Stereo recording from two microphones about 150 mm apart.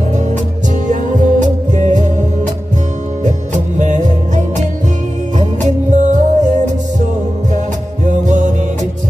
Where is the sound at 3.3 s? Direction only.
55° right (ahead or behind).